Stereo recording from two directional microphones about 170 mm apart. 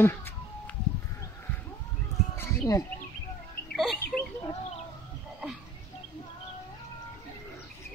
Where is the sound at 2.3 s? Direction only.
20° left (ahead or behind).